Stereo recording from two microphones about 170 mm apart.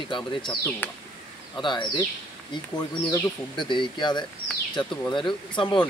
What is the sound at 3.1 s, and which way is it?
Speech, 25° left (ahead or behind).